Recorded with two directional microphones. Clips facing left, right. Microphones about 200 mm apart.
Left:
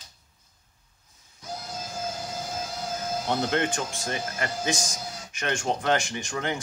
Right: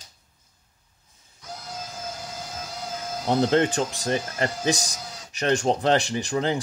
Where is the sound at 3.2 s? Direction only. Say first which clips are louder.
Right 7 dB; 35° right (ahead or behind).